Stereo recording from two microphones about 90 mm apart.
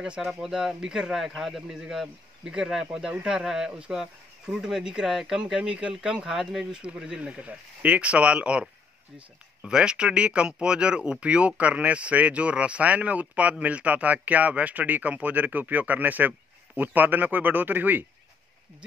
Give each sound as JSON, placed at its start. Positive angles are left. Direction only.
{"t": 0.0, "sound": "a man's voice", "side_deg": -10}